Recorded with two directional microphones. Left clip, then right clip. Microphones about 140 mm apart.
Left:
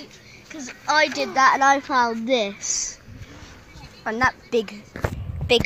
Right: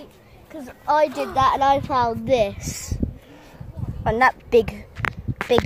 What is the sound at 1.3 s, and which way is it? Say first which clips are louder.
Speech: left 2 dB; 35° left (ahead or behind).